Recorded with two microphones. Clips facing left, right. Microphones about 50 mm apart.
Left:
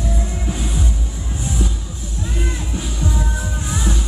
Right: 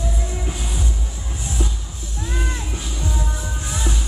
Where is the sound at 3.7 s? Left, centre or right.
Centre.